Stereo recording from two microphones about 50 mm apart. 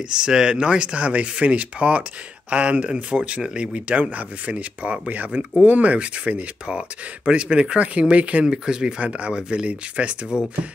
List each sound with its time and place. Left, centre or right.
0.1 s speech: centre